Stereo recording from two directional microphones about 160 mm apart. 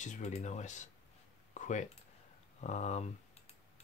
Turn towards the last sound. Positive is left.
turn(degrees=45)  # may be behind; listen again after turning